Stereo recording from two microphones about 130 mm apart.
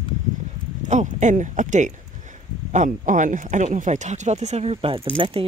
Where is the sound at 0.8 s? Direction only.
65° right (ahead or behind).